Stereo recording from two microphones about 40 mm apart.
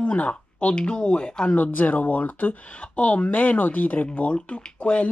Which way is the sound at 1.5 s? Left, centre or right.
Left.